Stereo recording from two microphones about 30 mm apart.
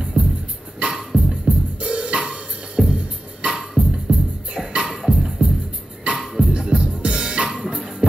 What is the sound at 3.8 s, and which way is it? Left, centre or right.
Music, right.